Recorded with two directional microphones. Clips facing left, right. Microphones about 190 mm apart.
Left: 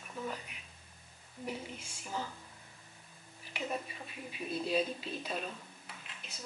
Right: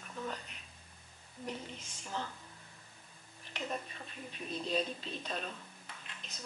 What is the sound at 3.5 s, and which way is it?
Speech, 10° left (ahead or behind).